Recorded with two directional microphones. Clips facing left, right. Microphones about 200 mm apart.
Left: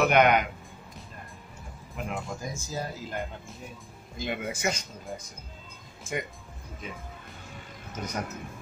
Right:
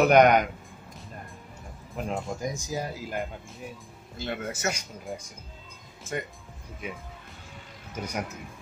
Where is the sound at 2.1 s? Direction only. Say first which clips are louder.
Right 4 dB; 20° right (ahead or behind).